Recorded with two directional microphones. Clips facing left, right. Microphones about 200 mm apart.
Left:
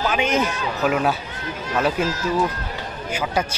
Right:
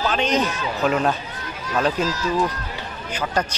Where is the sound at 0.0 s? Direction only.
10° left (ahead or behind).